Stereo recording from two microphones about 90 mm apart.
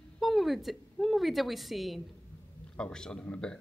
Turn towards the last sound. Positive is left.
turn(degrees=15)  # may be behind; listen again after turning